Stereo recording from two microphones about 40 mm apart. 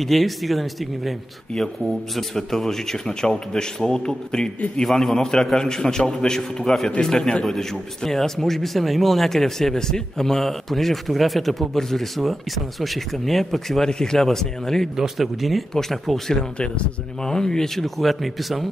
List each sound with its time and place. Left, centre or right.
0.0 s a man's voice: centre
7.4 s a man's voice: centre
15.0 s a man's voice: centre
16.5 s a man's voice: left; by 18.7 s centre